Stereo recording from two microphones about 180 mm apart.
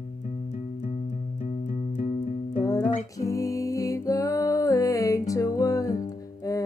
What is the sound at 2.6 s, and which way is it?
Music, 20° left (ahead or behind).